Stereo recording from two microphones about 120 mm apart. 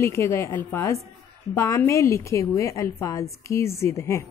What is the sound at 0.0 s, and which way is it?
A woman's voice, 20° left (ahead or behind).